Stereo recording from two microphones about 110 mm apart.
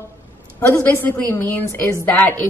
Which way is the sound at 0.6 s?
15° left (ahead or behind).